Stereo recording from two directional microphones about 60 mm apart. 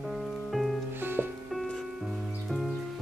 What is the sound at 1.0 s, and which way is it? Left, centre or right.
Music, right.